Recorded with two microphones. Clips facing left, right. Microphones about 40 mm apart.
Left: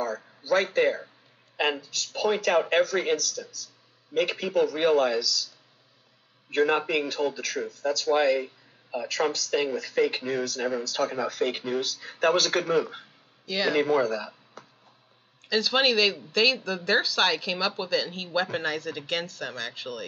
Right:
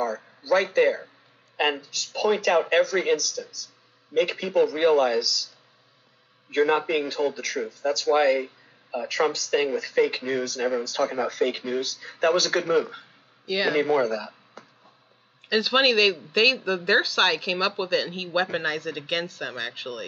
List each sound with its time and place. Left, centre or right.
0.7 s speech: centre
4.7 s speech: centre
6.5 s speech: centre
8.9 s speech: right
9.3 s speech: centre
15.4 s speech: centre
15.8 s a man's voice: centre